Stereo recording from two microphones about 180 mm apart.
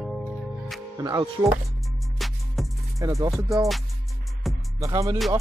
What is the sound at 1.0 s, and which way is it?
Music, 20° right (ahead or behind).